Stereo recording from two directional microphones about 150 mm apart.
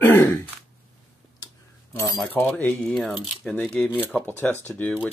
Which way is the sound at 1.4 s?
20° left (ahead or behind).